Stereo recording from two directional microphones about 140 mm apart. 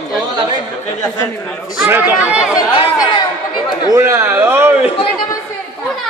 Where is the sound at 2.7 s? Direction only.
40° left (ahead or behind).